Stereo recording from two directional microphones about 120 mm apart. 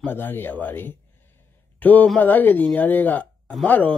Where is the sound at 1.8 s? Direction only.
15° left (ahead or behind).